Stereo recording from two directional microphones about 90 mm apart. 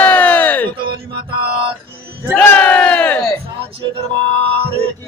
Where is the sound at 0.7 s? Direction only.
75° right (ahead or behind).